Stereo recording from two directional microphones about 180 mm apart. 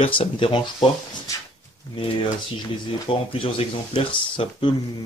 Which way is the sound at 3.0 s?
30° left (ahead or behind).